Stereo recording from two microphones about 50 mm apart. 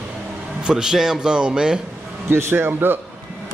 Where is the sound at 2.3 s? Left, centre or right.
Right.